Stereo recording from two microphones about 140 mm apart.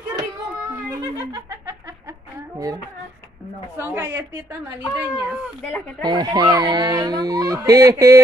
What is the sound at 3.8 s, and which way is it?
Speech, 20° right (ahead or behind).